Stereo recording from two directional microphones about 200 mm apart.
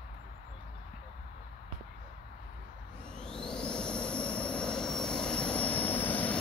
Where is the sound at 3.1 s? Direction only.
5° left (ahead or behind).